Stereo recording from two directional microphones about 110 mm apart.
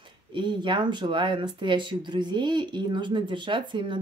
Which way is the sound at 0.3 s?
45° right (ahead or behind).